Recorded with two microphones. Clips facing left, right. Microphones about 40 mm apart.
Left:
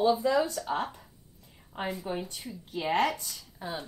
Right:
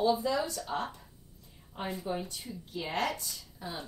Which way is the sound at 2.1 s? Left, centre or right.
Left.